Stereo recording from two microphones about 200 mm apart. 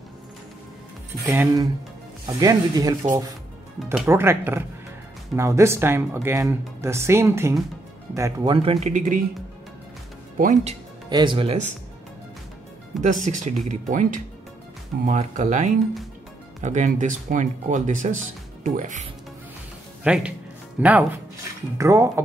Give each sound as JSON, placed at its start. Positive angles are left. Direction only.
{"t": 1.2, "sound": "speech", "side_deg": -10}
{"t": 8.6, "sound": "speech", "side_deg": -35}
{"t": 10.4, "sound": "speech", "side_deg": -35}
{"t": 11.1, "sound": "speech", "side_deg": -20}
{"t": 13.0, "sound": "speech", "side_deg": -40}
{"t": 20.0, "sound": "speech", "side_deg": -5}